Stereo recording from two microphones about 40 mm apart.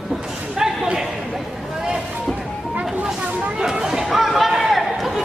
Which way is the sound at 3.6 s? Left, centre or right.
Centre.